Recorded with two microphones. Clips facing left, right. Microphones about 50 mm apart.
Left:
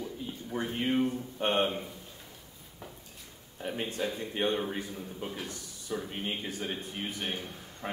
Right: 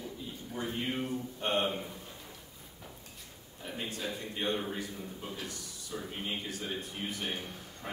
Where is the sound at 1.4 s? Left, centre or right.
Left.